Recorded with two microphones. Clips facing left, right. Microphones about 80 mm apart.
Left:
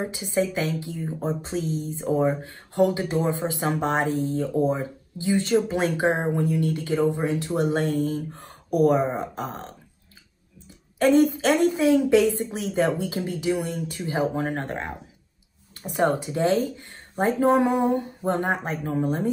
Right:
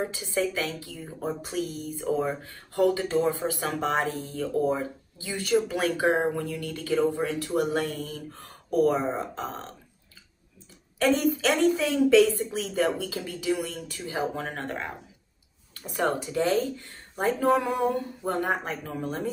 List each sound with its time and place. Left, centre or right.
0.0 s speech: centre
11.0 s speech: left